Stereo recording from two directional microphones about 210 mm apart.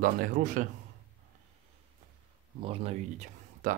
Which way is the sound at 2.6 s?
25° right (ahead or behind).